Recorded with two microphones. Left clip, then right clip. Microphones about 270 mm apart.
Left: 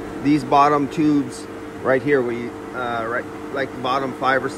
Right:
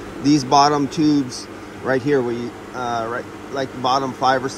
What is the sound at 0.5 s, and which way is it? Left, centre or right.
Speech, centre.